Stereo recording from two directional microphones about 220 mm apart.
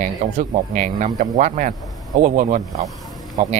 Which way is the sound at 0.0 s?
35° right (ahead or behind).